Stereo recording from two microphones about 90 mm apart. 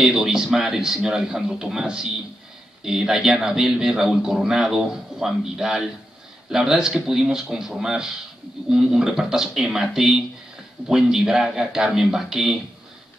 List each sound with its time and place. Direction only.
0.0 s speech: 5° right (ahead or behind)